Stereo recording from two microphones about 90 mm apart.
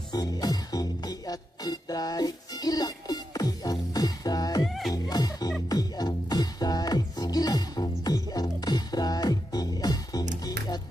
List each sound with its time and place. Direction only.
0.1 s music: 45° left (ahead or behind)
4.6 s music: centre (ahead or behind)
4.9 s music: 45° left (ahead or behind)